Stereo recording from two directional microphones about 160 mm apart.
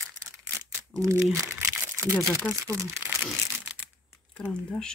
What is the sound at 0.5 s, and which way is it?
Crumpling, 15° right (ahead or behind).